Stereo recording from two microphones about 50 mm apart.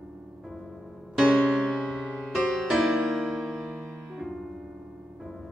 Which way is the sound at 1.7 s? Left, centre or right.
Centre.